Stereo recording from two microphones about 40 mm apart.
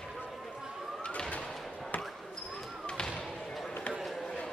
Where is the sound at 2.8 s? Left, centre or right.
Left.